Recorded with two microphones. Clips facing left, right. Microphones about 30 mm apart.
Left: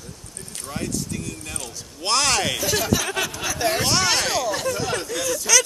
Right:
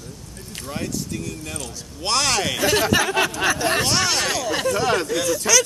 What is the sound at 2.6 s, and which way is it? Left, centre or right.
Speech, right.